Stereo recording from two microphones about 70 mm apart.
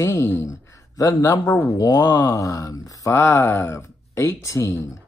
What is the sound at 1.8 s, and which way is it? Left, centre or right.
Speech, left.